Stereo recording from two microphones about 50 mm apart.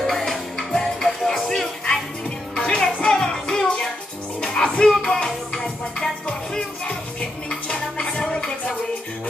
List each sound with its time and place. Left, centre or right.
0.0 s music: centre
2.5 s music: left